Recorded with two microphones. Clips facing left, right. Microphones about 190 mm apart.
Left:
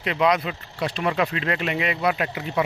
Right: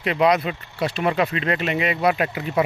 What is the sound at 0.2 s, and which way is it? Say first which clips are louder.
Speech: right 2 dB; 45° right (ahead or behind).